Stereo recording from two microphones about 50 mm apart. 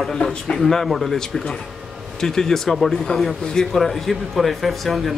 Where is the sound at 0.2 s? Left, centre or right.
Centre.